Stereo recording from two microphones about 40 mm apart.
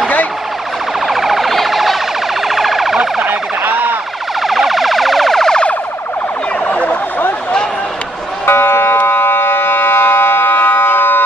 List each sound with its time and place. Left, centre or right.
1.0 s emergency vehicle: centre
3.3 s emergency vehicle: right
4.4 s emergency vehicle: centre
6.7 s emergency vehicle: left
8.5 s music: left
9.0 s siren: left